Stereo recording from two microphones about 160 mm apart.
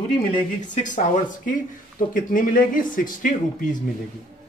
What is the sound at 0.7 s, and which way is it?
Speech, 55° left (ahead or behind).